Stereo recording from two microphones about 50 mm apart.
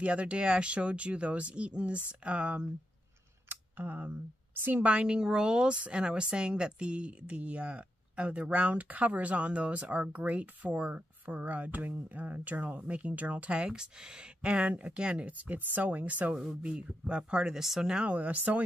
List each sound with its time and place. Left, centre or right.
0.0 s a woman's voice: right
3.4 s scissors: right
4.8 s a woman's voice: right
13.7 s a woman's voice: centre; by 16.3 s right
17.2 s speech: centre
18.0 s speech: right